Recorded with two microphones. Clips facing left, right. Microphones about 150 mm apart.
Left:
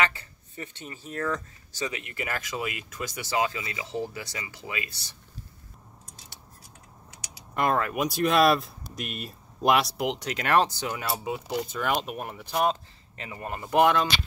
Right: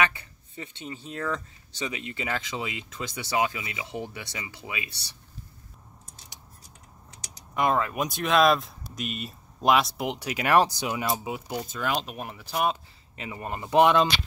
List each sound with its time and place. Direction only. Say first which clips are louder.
0.1 s speech: even; 20° right (ahead or behind)
7.5 s speech: even; centre (ahead or behind)
13.2 s speech: right 1 dB; 20° right (ahead or behind)